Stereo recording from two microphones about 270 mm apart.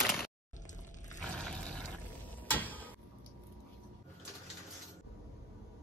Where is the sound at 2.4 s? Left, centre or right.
Centre.